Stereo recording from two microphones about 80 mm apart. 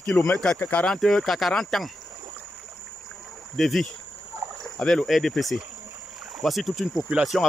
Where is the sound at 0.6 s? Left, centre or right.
Centre.